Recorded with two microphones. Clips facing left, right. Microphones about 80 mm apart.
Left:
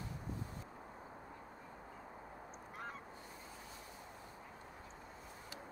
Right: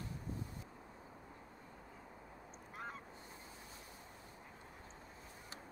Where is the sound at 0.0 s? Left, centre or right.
Left.